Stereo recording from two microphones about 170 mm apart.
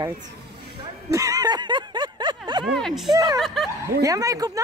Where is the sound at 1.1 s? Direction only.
20° right (ahead or behind).